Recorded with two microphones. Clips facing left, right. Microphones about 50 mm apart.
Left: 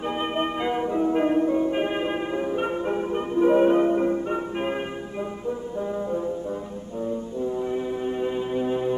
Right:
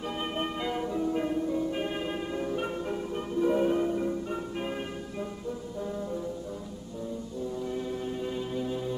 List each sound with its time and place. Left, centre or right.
0.2 s music: left
7.5 s music: left